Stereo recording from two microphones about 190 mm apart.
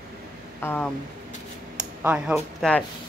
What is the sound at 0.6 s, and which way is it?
Speech, 10° left (ahead or behind).